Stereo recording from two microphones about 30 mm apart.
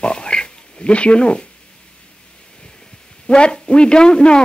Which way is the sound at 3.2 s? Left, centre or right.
Left.